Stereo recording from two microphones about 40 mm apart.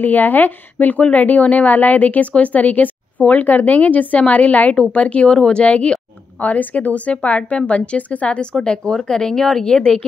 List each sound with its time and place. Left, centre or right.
0.0 s speech: left
6.4 s speech: left
8.6 s speech: centre